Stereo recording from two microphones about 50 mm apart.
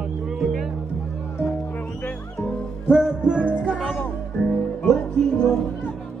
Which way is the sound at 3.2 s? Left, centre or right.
Right.